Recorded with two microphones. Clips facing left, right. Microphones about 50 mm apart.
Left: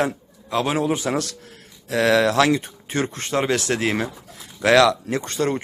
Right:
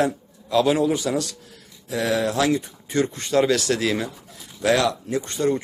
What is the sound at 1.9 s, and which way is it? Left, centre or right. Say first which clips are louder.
Speech: left 5 dB; left.